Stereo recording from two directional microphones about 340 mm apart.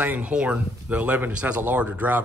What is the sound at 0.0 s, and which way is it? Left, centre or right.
A man's voice, centre.